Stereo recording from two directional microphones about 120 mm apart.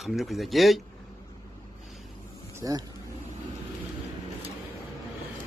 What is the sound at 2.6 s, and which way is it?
Speech, 30° right (ahead or behind).